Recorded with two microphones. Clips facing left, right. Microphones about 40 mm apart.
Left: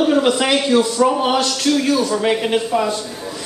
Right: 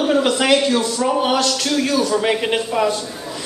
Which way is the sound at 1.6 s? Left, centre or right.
Centre.